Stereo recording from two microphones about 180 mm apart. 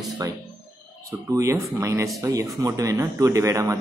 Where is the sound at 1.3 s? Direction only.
15° right (ahead or behind).